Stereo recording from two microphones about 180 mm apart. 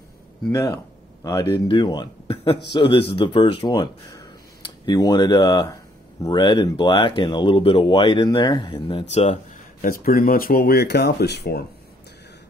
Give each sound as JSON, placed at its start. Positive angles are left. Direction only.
{"t": 0.5, "sound": "speech", "side_deg": 15}
{"t": 9.1, "sound": "a sound", "side_deg": 35}
{"t": 9.8, "sound": "speech", "side_deg": 55}